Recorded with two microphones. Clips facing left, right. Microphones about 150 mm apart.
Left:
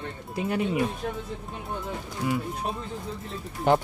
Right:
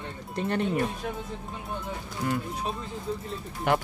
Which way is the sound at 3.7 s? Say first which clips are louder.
Left 4 dB; 30° left (ahead or behind).